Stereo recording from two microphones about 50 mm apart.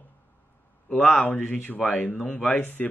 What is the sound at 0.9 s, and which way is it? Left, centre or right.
Speech, centre.